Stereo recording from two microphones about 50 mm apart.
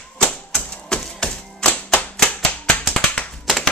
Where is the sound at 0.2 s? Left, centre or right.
Centre.